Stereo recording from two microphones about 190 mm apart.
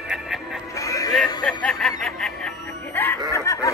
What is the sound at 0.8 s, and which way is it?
Music, 20° left (ahead or behind).